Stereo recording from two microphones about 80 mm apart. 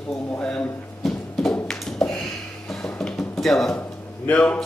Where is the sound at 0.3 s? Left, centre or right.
Centre.